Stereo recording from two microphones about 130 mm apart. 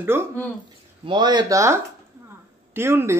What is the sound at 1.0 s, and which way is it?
A man's voice, 35° right (ahead or behind).